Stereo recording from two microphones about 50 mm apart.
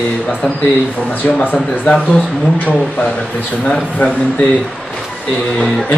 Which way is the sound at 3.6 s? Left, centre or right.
Centre.